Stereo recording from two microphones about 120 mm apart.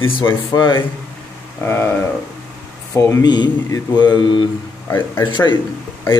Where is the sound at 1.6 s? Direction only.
20° left (ahead or behind).